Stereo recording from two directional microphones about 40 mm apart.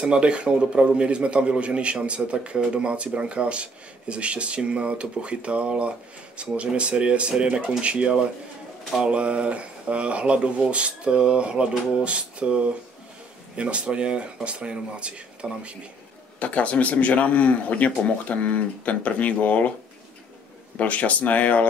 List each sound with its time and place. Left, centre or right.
0.0 s a man's voice: right
16.3 s a man's voice: left
20.7 s a man's voice: left